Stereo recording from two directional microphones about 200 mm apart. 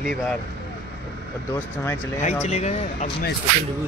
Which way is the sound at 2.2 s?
35° left (ahead or behind).